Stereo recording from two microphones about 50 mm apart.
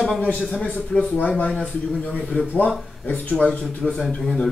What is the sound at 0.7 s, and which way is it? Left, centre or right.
Speech, centre.